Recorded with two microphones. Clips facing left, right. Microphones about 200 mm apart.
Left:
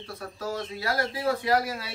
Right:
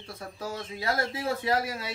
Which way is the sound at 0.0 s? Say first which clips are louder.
Left 3 dB; 25° right (ahead or behind).